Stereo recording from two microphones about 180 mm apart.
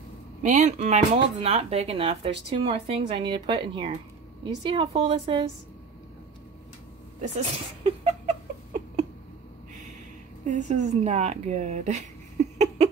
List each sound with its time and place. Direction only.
0.4 s a woman's voice: 45° right (ahead or behind)
7.2 s speech: 40° right (ahead or behind)
10.4 s speech: 40° right (ahead or behind)